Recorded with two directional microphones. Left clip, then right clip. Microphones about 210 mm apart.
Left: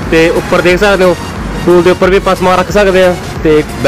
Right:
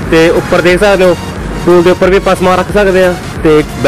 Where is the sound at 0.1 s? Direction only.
10° right (ahead or behind).